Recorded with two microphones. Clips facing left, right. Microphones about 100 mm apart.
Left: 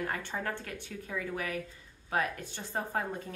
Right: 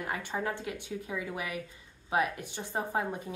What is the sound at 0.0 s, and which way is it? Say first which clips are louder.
Speech: right 1 dB; 10° right (ahead or behind).